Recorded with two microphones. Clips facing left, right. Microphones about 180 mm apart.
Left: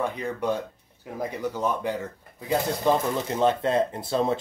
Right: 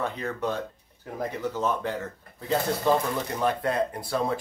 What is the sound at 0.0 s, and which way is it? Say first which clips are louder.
Speech: left 2 dB; 15° left (ahead or behind).